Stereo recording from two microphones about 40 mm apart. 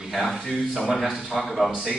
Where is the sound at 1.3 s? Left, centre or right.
Centre.